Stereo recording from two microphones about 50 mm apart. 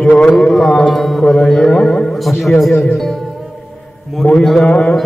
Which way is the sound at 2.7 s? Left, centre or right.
Left.